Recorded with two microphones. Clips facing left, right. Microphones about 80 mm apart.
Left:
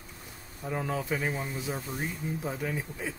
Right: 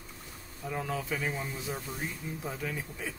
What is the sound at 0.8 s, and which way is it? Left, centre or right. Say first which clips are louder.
Speech: left 3 dB; centre.